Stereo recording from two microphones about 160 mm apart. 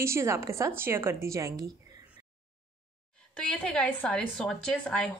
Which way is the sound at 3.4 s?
5° left (ahead or behind).